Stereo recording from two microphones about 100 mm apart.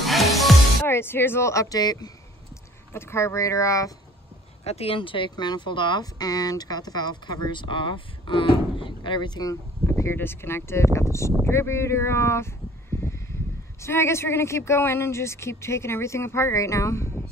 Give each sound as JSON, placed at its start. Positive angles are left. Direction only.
{"t": 0.0, "sound": "music", "side_deg": 0}
{"t": 0.8, "sound": "speech", "side_deg": 25}
{"t": 2.9, "sound": "speech", "side_deg": 25}
{"t": 4.6, "sound": "speech", "side_deg": 80}
{"t": 5.3, "sound": "speech", "side_deg": 45}
{"t": 9.8, "sound": "speech", "side_deg": 25}
{"t": 13.7, "sound": "speech", "side_deg": 25}